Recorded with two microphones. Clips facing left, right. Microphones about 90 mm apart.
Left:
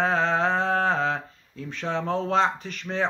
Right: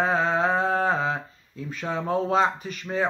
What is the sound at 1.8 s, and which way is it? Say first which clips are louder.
Speech: right 1 dB; 10° right (ahead or behind).